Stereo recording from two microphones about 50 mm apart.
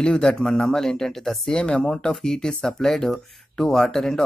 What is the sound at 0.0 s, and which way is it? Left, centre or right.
Speech, centre.